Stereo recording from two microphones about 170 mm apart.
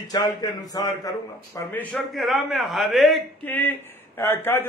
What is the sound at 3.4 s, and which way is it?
A man's voice, 10° left (ahead or behind).